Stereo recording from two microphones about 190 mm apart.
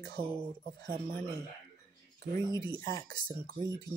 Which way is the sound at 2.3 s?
20° left (ahead or behind).